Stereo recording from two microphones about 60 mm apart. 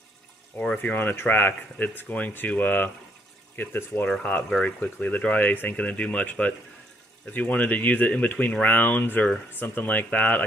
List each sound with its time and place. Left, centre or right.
0.8 s speech: left
2.0 s speech: left
4.6 s speech: left